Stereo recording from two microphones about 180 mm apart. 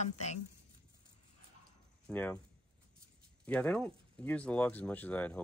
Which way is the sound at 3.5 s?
5° left (ahead or behind).